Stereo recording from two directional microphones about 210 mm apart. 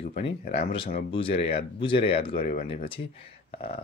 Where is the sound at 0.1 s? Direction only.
25° left (ahead or behind).